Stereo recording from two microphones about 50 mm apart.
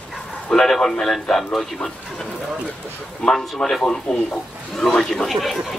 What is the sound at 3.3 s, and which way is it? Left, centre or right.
A man's voice, centre.